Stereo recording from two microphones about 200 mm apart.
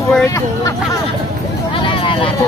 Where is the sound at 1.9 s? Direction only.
25° left (ahead or behind).